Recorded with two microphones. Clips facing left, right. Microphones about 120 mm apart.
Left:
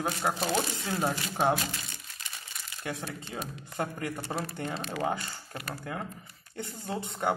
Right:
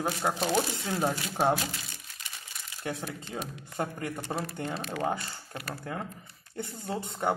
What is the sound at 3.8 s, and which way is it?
Speech, 30° right (ahead or behind).